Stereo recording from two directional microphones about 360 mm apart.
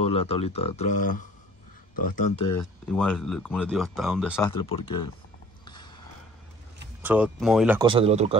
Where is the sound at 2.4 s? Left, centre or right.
Centre.